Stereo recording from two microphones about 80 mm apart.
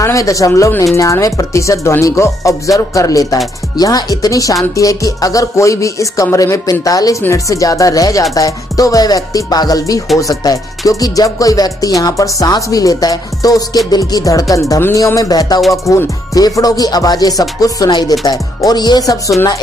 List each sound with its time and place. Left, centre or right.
0.0 s speech: left
3.7 s music: left
17.8 s speech: left
18.2 s music: left